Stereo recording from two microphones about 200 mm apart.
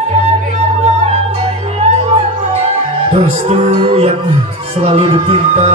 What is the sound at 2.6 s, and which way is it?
Music, 30° right (ahead or behind).